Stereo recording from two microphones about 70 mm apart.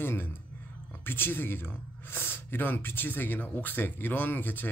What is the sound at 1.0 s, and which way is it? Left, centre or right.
Speech, left.